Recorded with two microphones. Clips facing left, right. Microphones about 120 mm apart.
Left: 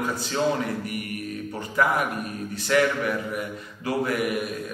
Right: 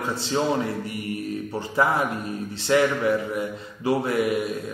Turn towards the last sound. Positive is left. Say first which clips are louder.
# right 3 dB
turn(degrees=-25)  # may be behind; listen again after turning